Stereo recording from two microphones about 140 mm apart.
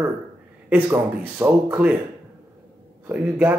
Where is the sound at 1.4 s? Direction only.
10° right (ahead or behind).